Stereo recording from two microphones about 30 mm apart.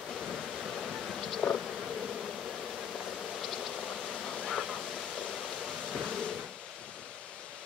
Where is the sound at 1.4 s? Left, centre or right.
Centre.